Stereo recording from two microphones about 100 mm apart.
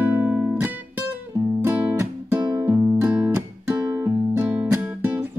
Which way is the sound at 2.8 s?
15° right (ahead or behind).